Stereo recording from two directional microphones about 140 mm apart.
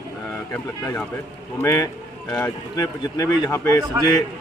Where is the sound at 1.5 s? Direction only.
25° left (ahead or behind).